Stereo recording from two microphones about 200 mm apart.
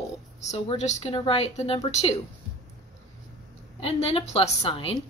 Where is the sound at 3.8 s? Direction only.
30° left (ahead or behind).